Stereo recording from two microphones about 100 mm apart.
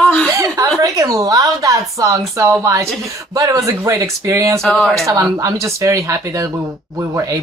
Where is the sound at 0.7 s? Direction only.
35° right (ahead or behind).